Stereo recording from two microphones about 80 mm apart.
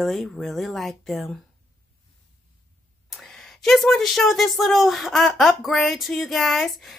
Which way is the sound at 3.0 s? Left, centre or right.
Centre.